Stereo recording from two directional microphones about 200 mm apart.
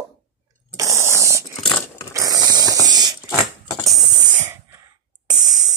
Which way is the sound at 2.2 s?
20° right (ahead or behind).